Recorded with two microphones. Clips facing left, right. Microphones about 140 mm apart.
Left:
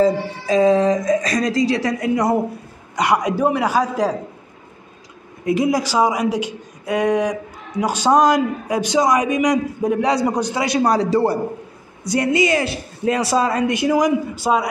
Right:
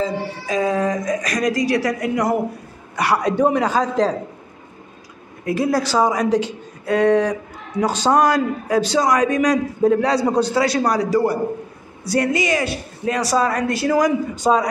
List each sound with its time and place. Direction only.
0.0 s a man's voice: 30° left (ahead or behind); by 4.1 s 10° left (ahead or behind)
5.4 s a man's voice: 20° left (ahead or behind)